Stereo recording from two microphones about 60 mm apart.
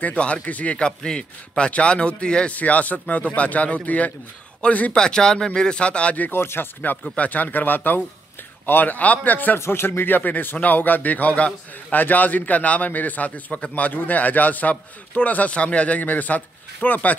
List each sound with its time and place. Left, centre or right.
0.0 s a man's voice: left
6.3 s speech: left
7.2 s a man's voice: left
9.6 s a man's voice: left